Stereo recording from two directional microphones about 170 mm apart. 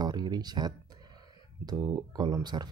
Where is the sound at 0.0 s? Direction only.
25° right (ahead or behind).